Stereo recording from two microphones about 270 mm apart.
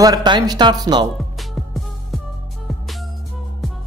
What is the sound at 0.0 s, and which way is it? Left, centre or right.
Speech, centre.